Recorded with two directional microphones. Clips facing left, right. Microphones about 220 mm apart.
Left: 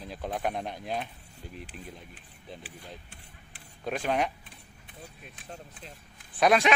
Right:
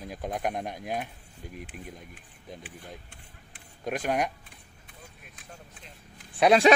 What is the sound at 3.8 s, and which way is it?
Speech, 10° right (ahead or behind).